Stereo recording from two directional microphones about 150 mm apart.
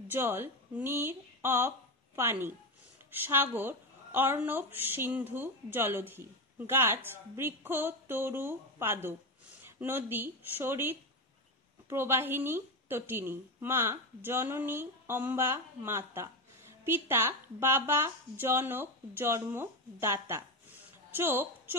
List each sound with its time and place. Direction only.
0.1 s a woman's voice: 15° right (ahead or behind)